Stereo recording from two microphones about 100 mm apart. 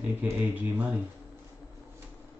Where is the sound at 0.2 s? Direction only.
15° right (ahead or behind).